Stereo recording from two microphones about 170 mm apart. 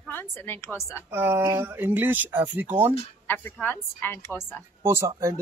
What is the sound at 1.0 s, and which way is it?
Speech, 15° right (ahead or behind).